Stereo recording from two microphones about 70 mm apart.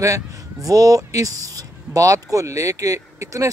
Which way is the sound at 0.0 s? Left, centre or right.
Right.